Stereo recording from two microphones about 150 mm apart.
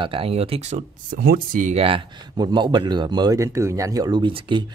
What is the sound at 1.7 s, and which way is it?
Speech, 35° right (ahead or behind).